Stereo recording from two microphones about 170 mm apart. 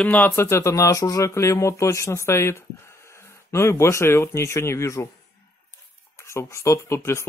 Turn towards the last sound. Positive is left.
turn(degrees=15)  # may be behind; listen again after turning